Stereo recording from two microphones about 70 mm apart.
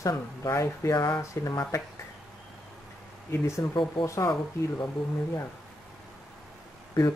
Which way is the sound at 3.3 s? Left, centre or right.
Left.